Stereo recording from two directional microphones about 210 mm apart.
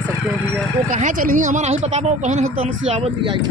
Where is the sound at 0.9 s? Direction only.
40° right (ahead or behind).